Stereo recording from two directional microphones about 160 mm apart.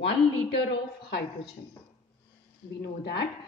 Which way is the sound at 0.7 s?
90° left.